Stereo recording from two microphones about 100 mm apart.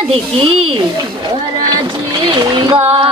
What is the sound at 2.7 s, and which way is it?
Speech, 70° right (ahead or behind).